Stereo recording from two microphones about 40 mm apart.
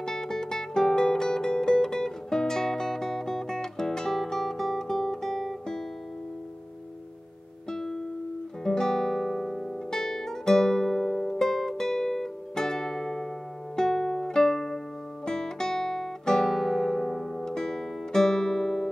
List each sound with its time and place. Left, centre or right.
0.0 s music: centre
7.7 s music: centre
15.2 s guitar: centre